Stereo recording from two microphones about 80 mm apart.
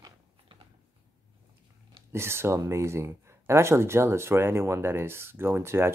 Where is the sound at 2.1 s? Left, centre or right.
Right.